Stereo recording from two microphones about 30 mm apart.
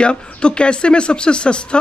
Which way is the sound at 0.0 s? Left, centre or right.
Left.